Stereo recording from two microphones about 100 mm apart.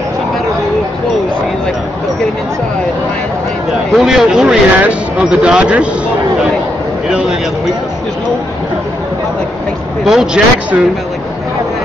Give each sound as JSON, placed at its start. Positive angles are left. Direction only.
{"t": 3.9, "sound": "speech", "side_deg": -5}
{"t": 7.1, "sound": "a sound", "side_deg": -5}
{"t": 10.0, "sound": "speech", "side_deg": -5}